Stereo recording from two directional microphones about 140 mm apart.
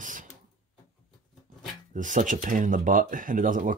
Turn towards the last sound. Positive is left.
turn(degrees=-75)  # may be behind; listen again after turning